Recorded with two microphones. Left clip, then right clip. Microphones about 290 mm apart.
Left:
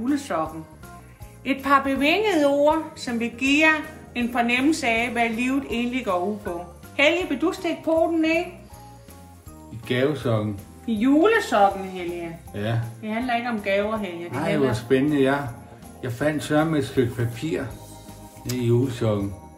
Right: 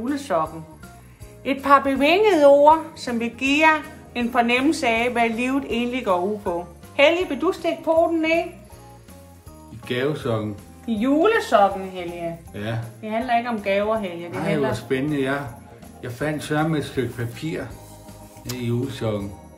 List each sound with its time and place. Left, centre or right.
0.0 s a woman's voice: centre
9.8 s speech: centre
10.9 s a woman's voice: centre
12.5 s speech: centre
13.0 s a woman's voice: centre
14.3 s speech: centre